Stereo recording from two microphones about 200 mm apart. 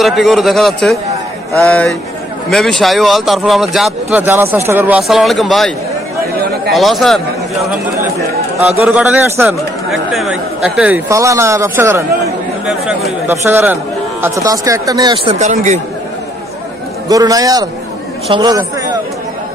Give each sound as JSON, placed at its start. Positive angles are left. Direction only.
{"t": 0.0, "sound": "a man's voice", "side_deg": 0}
{"t": 4.3, "sound": "speech", "side_deg": -10}
{"t": 6.7, "sound": "speech", "side_deg": 0}
{"t": 8.6, "sound": "speech", "side_deg": 0}
{"t": 15.3, "sound": "a man's voice", "side_deg": -35}
{"t": 17.1, "sound": "speech", "side_deg": -20}